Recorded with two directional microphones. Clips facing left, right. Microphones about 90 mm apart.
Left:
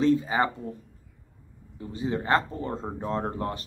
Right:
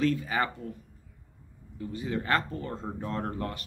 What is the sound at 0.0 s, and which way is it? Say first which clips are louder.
Speech: left 5 dB; 25° left (ahead or behind).